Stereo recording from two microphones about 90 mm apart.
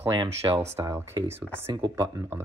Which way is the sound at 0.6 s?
30° right (ahead or behind).